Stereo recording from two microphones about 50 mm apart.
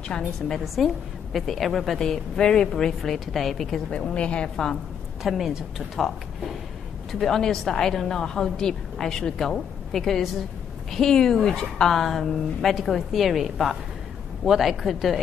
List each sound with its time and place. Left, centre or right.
0.7 s a woman's voice: centre
3.9 s a woman's voice: centre
5.2 s a woman's voice: centre